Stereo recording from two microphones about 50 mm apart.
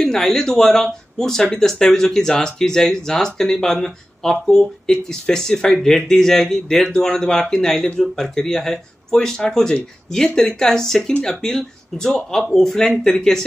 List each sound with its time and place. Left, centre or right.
0.0 s speech: centre